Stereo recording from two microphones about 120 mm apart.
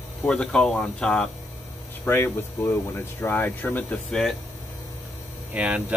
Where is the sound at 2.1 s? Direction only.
20° left (ahead or behind).